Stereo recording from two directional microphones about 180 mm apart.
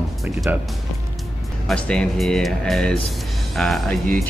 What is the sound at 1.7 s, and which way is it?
Speech, 5° left (ahead or behind).